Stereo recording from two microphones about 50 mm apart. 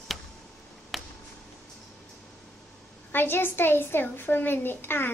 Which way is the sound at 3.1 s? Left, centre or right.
Left.